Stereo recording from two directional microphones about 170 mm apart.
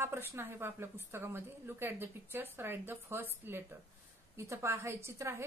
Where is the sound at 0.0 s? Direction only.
15° right (ahead or behind).